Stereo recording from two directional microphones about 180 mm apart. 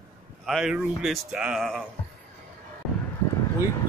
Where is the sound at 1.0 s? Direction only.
5° right (ahead or behind).